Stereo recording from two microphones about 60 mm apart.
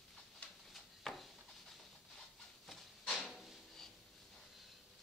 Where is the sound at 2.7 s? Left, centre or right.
Centre.